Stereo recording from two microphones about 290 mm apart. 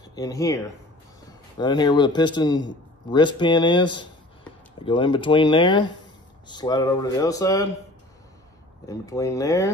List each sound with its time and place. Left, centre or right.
0.0 s speech: centre
1.6 s a man's voice: centre
8.8 s a man's voice: centre